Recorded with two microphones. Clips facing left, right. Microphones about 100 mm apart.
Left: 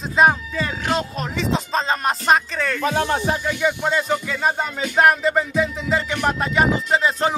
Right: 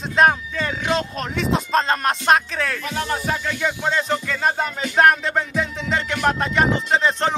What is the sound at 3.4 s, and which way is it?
Music, 5° left (ahead or behind).